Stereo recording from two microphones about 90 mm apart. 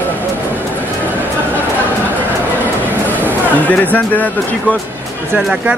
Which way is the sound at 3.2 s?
20° left (ahead or behind).